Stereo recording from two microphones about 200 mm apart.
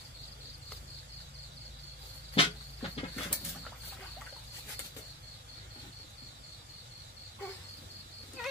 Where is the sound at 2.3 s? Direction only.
30° left (ahead or behind).